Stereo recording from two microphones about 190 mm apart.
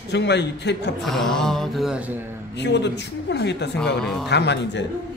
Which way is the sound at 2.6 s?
65° left (ahead or behind).